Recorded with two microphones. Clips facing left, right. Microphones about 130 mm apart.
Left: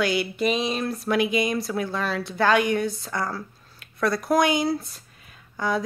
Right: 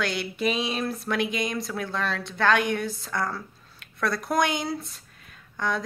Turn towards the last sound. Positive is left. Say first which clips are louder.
# left 3 dB
turn(degrees=5)  # may be behind; listen again after turning